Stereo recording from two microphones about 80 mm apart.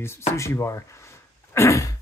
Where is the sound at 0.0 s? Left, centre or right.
Left.